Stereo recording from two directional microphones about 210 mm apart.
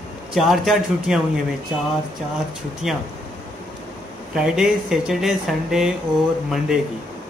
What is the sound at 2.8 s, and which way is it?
Speech, centre (ahead or behind).